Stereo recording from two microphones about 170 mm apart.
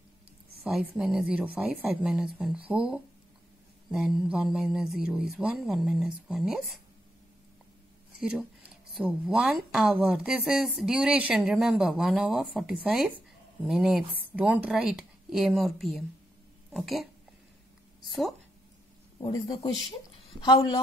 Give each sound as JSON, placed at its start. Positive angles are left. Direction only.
{"t": 0.7, "sound": "speech", "side_deg": -5}
{"t": 8.2, "sound": "speech", "side_deg": -5}
{"t": 19.1, "sound": "speech", "side_deg": 25}